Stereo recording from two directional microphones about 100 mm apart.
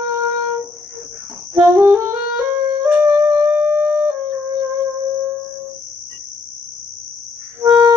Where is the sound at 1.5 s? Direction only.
30° right (ahead or behind).